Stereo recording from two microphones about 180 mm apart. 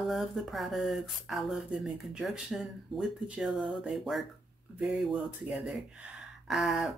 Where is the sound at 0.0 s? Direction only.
Centre (ahead or behind).